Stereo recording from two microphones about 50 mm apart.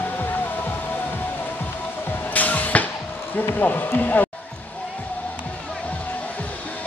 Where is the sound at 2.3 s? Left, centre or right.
Left.